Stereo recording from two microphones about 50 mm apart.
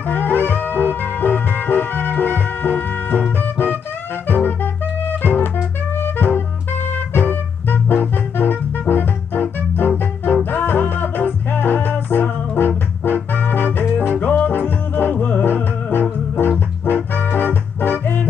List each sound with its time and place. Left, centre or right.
0.0 s music: left
15.4 s music: left